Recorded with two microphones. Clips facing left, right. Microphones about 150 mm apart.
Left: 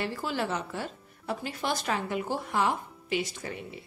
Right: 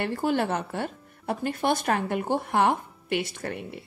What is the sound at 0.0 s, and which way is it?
A woman's voice, 55° right (ahead or behind).